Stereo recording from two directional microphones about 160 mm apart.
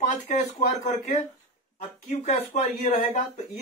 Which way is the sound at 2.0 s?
50° left (ahead or behind).